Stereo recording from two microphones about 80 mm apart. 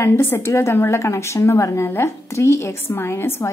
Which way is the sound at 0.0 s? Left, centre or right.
Left.